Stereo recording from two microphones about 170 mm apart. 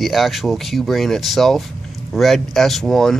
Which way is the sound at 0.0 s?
Centre (ahead or behind).